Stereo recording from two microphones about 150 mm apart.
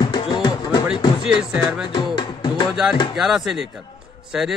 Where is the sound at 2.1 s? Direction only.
30° left (ahead or behind).